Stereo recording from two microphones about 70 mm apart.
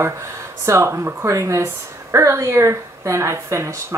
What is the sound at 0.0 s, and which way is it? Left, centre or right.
Speech, right.